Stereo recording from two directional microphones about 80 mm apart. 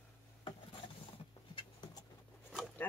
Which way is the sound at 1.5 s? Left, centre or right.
Left.